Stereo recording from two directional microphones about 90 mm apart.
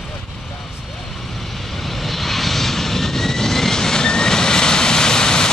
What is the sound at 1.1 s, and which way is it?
Vehicle, centre (ahead or behind).